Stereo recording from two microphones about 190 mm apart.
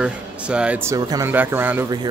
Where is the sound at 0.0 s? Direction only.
5° right (ahead or behind).